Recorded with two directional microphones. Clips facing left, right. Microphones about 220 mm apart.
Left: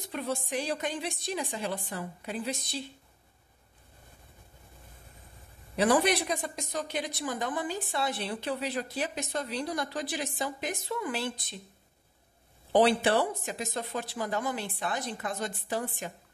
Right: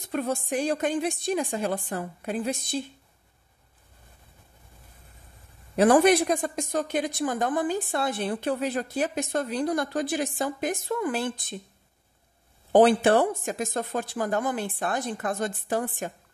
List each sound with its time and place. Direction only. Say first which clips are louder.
0.1 s a woman's voice: right 5 dB; 50° right (ahead or behind)
5.8 s a woman's voice: right 7 dB; 50° right (ahead or behind)
12.7 s a woman's voice: right 5 dB; 50° right (ahead or behind)